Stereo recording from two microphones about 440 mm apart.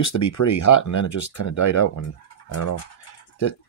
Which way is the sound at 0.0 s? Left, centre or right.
Left.